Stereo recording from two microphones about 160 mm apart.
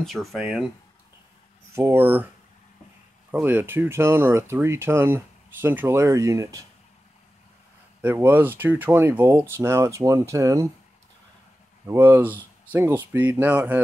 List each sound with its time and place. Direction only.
0.0 s speech: centre (ahead or behind)
1.8 s speech: 15° right (ahead or behind)
8.0 s speech: 15° right (ahead or behind)
11.9 s speech: 15° right (ahead or behind)